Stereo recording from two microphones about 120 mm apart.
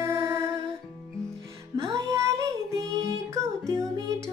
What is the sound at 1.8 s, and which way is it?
Child singing, 25° right (ahead or behind).